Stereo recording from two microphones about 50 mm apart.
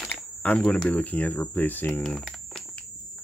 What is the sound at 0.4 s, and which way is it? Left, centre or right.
Speech, left.